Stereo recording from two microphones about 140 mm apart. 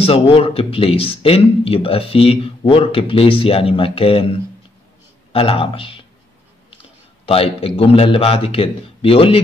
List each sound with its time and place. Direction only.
0.0 s a man's voice: 45° left (ahead or behind)